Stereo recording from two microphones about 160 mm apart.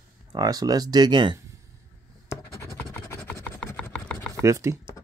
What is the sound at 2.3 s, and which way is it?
Scratch, 15° left (ahead or behind).